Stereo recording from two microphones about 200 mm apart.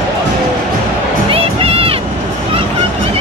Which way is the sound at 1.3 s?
30° right (ahead or behind).